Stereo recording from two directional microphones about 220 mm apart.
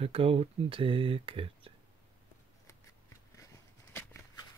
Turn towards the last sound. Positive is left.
turn(degrees=10)  # may be behind; listen again after turning